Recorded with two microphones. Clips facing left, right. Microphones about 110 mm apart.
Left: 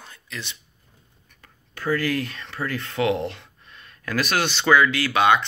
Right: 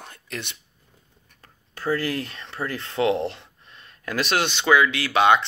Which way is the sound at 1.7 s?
30° right (ahead or behind).